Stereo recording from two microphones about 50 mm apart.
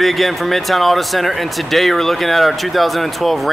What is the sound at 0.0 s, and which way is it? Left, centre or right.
Speech, centre.